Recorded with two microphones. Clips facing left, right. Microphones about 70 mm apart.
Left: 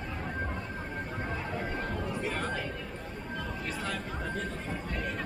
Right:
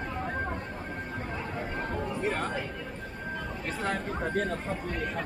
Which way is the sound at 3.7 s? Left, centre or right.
Right.